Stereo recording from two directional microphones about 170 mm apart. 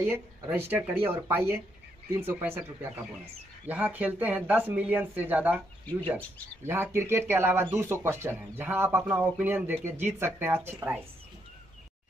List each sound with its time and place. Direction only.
0.0 s speech: 10° right (ahead or behind)
5.9 s speech: 10° left (ahead or behind)
6.6 s speech: 15° right (ahead or behind)